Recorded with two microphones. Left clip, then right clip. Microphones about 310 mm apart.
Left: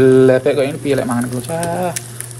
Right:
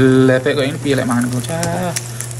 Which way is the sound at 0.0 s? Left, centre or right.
Centre.